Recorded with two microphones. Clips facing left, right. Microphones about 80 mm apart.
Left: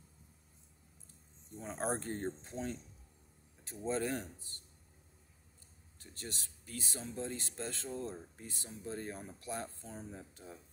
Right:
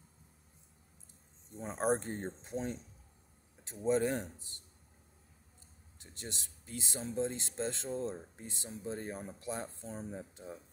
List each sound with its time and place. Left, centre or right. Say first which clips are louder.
1.6 s speech: right 5 dB; right
5.9 s speech: right 1 dB; right